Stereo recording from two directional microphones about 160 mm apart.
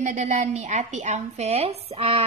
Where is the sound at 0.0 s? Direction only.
45° right (ahead or behind).